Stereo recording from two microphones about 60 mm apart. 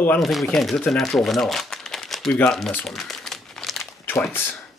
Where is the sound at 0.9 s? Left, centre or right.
Centre.